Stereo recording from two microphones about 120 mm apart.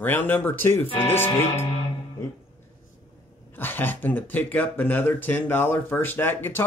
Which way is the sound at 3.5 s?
15° left (ahead or behind).